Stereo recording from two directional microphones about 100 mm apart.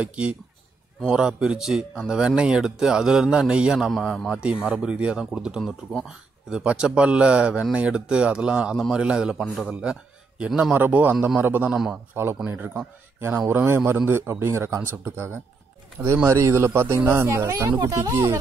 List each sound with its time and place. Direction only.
0.0 s speech: 10° right (ahead or behind)
11.7 s a man's voice: 5° right (ahead or behind)
12.1 s speech: 25° right (ahead or behind)